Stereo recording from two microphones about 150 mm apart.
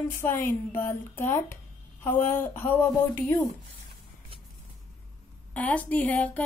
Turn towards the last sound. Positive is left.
turn(degrees=10)  # may be behind; listen again after turning